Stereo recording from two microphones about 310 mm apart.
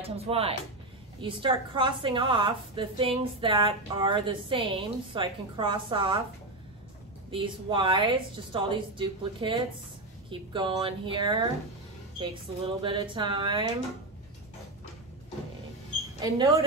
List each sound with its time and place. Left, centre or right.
0.0 s a woman's voice: centre
7.2 s a woman's voice: centre
16.2 s a woman's voice: centre